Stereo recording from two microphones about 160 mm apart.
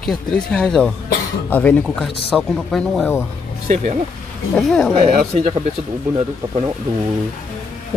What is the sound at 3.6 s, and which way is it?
Speech, 45° right (ahead or behind).